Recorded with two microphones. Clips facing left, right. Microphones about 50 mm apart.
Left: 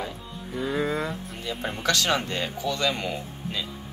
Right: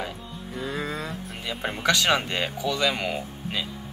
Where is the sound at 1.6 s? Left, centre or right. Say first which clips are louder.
Right 3 dB; centre.